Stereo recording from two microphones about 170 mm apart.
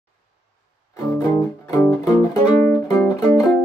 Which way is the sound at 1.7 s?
20° left (ahead or behind).